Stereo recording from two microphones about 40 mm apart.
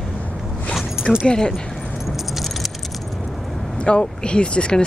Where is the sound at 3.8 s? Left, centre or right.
Left.